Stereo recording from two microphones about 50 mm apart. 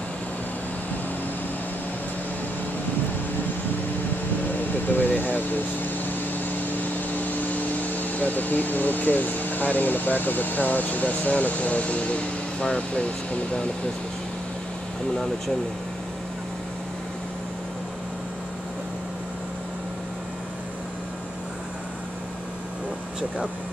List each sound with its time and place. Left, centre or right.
4.8 s air conditioning: left
6.8 s speech: left